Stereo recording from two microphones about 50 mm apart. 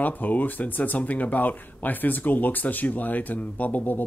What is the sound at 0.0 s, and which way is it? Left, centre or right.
Speech, left.